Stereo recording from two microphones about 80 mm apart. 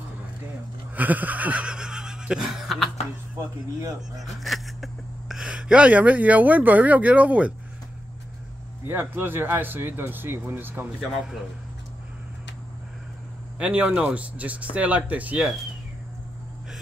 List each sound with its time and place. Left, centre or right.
0.9 s speech: centre
4.2 s speech: centre
8.8 s speech: right
13.6 s speech: centre